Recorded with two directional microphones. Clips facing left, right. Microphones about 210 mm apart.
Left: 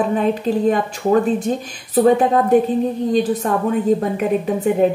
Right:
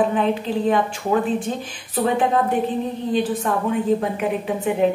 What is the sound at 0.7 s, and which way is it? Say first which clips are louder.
A woman's voice: left 3 dB; 40° left (ahead or behind).